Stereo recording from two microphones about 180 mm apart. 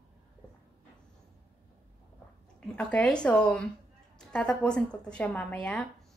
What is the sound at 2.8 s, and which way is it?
A woman's voice, 5° left (ahead or behind).